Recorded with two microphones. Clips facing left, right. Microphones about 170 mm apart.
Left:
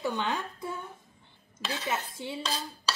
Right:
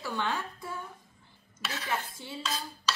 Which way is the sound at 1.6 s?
25° left (ahead or behind).